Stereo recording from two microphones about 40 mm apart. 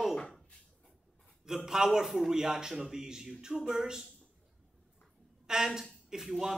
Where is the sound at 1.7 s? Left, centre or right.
Centre.